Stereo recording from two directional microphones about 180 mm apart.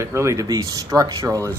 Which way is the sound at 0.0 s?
15° right (ahead or behind).